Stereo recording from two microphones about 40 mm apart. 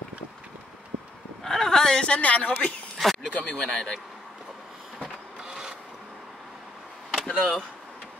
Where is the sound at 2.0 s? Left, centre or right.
Left.